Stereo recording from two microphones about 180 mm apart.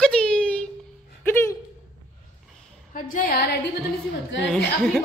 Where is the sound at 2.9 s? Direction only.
50° left (ahead or behind).